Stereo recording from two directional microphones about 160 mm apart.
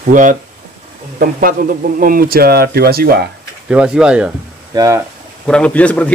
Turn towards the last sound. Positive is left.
turn(degrees=10)  # may be behind; listen again after turning